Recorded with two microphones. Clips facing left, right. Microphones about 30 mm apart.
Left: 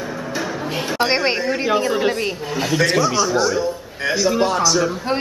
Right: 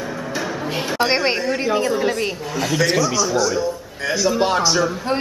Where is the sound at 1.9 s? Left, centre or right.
Left.